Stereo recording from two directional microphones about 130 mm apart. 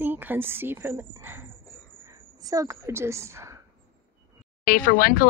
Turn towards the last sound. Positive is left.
turn(degrees=90)